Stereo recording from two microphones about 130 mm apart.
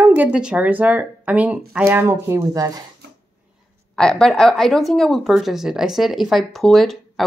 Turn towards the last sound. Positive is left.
turn(degrees=0)  # may be behind; listen again after turning